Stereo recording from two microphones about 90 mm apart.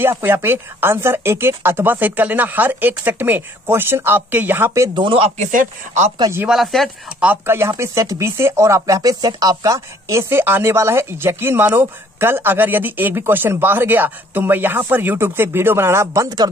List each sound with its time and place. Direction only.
0.0 s speech: 25° right (ahead or behind)
4.9 s speech: 75° right (ahead or behind)
6.5 s speech: centre (ahead or behind)
7.4 s speech: 30° right (ahead or behind)